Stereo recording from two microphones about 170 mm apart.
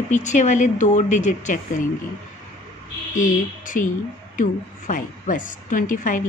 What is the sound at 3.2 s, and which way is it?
A woman's voice, 50° left (ahead or behind).